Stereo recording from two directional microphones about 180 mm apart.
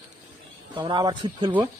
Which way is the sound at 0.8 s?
25° right (ahead or behind).